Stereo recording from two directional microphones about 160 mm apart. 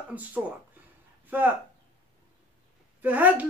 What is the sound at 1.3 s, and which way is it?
Speech, 10° right (ahead or behind).